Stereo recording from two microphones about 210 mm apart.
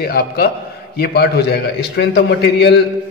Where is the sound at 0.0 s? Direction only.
45° left (ahead or behind).